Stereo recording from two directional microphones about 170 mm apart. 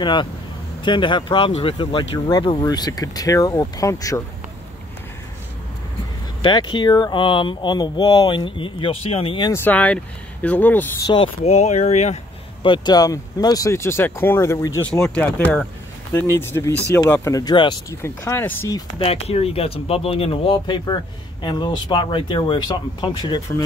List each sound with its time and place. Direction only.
0.0 s speech: 25° left (ahead or behind)
6.4 s speech: 25° left (ahead or behind)
9.5 s speech: 10° left (ahead or behind)
11.0 s speech: 25° left (ahead or behind)
11.4 s speech: 40° left (ahead or behind)
12.6 s speech: 25° left (ahead or behind)
15.0 s speech: 5° left (ahead or behind); by 17.9 s 25° left (ahead or behind)
18.0 s speech: 15° left (ahead or behind)
18.9 s speech: 35° left (ahead or behind)